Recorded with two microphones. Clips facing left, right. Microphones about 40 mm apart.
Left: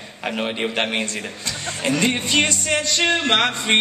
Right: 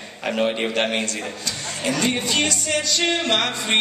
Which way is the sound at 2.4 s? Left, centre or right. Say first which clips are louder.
Left 1 dB; left.